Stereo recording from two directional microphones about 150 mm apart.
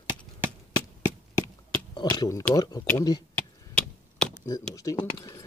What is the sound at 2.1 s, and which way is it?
Speech, 20° left (ahead or behind).